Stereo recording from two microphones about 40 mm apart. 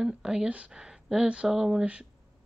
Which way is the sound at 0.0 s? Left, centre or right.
Centre.